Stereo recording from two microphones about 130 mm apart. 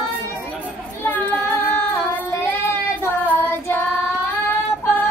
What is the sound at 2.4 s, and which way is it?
Child singing, 20° left (ahead or behind).